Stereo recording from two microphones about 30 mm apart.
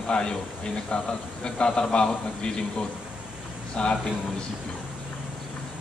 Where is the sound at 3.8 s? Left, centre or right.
Left.